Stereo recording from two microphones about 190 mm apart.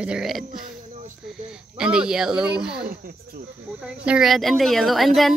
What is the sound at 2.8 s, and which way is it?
Speech, 50° right (ahead or behind).